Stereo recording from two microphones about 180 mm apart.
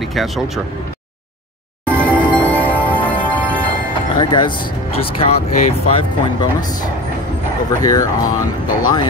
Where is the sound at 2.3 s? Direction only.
10° left (ahead or behind).